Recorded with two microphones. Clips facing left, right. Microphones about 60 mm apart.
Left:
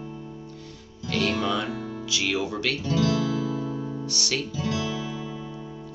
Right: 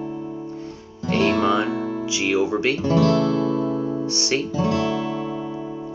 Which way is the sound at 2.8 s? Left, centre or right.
Right.